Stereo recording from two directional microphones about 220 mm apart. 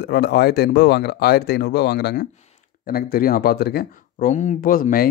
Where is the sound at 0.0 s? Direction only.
50° left (ahead or behind).